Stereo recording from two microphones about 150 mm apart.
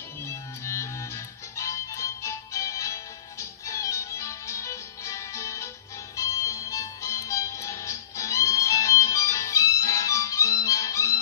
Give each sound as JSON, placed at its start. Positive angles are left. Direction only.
{"t": 0.3, "sound": "music", "side_deg": 20}